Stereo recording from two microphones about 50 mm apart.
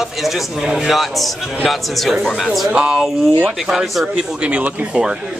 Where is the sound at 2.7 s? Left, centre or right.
Centre.